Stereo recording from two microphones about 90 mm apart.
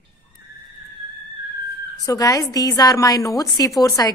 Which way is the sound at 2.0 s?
40° left (ahead or behind).